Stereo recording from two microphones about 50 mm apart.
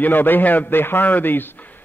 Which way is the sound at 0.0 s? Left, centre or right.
Left.